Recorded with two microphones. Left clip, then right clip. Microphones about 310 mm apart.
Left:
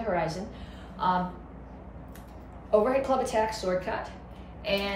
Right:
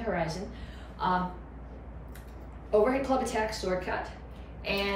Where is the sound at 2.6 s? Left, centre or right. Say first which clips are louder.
Left 2 dB; centre.